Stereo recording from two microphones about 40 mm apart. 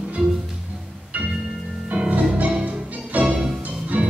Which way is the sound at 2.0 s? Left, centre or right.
Right.